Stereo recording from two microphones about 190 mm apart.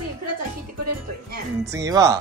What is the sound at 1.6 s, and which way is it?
Wail, 15° right (ahead or behind).